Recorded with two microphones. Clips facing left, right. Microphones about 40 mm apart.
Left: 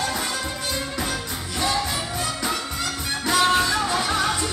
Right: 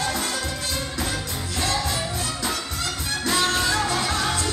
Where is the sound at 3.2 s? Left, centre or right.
Centre.